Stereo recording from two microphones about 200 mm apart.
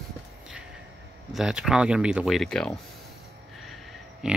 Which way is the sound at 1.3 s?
5° right (ahead or behind).